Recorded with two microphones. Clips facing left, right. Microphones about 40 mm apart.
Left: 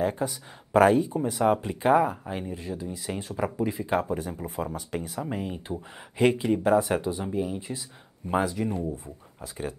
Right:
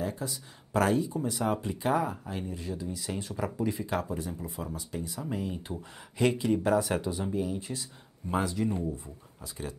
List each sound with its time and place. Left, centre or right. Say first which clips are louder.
0.0 s speech: left 7 dB; left
5.2 s speech: left 2 dB; left